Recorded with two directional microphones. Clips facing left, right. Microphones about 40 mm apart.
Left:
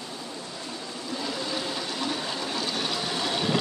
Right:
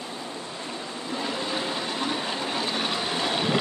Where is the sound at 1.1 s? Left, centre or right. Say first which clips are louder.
Right 2 dB; right.